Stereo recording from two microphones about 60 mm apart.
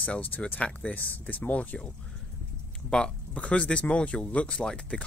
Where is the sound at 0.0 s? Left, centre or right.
Left.